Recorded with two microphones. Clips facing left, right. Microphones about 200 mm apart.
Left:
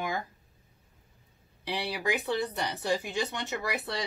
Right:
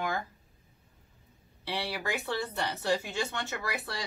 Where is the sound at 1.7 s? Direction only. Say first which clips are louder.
Left 3 dB; 15° left (ahead or behind).